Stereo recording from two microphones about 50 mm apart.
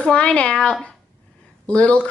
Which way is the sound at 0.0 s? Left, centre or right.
Left.